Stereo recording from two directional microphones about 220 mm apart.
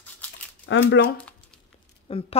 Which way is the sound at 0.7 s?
60° left (ahead or behind).